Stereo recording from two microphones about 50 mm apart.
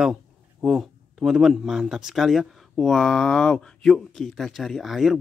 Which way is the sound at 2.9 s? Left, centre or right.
Centre.